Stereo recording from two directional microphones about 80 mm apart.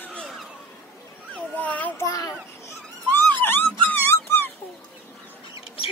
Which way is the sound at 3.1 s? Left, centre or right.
Left.